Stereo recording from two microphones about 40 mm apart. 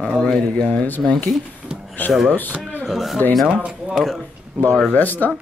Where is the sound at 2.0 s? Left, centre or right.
Left.